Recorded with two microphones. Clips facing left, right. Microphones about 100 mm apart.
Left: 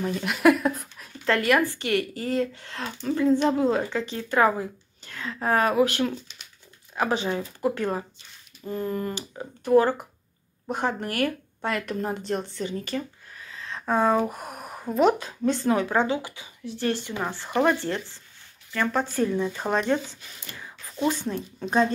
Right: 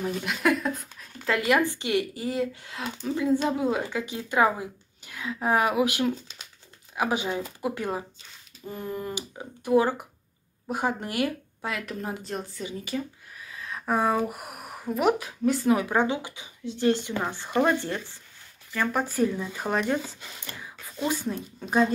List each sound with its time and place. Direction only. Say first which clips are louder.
0.0 s speech: left 5 dB; 5° left (ahead or behind)
1.2 s speech: left 2 dB; 10° right (ahead or behind)
11.6 s speech: left 5 dB; 5° right (ahead or behind)
13.5 s a sound: even; 10° right (ahead or behind)
13.8 s speech: left 3 dB; 10° right (ahead or behind)
14.2 s speech: left 2 dB; 30° left (ahead or behind)
14.5 s a sound: left 2 dB; 5° right (ahead or behind)
15.0 s speech: left 3 dB; 5° right (ahead or behind)
19.6 s speech: left 1 dB; 10° left (ahead or behind)
21.1 s speech: left 1 dB; 10° right (ahead or behind)